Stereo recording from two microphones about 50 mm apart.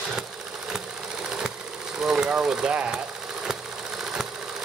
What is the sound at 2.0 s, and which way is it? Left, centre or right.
Engine, centre.